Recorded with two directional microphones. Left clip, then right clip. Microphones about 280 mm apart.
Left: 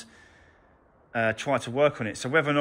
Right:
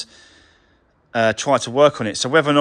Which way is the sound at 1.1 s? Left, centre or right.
Centre.